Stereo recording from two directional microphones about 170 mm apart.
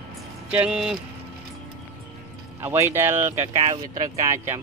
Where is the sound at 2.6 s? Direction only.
15° right (ahead or behind).